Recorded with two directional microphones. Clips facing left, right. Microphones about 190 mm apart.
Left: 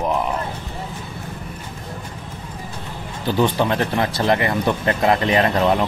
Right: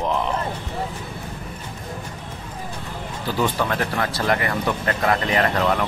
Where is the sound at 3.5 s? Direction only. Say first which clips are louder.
Left 4 dB; 20° left (ahead or behind).